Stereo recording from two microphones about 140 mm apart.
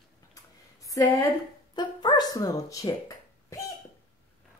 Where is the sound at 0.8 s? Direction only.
25° left (ahead or behind).